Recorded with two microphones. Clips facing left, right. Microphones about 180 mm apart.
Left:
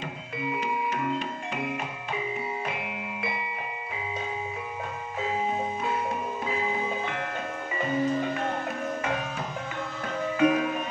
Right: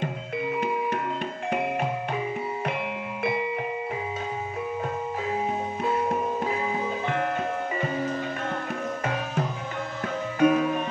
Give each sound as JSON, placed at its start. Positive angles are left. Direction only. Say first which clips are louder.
{"t": 10.4, "sound": "music", "louder": "right 3 dB", "side_deg": -40}